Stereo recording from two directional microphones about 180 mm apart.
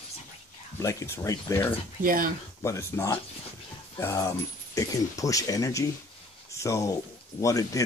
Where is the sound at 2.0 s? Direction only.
50° right (ahead or behind).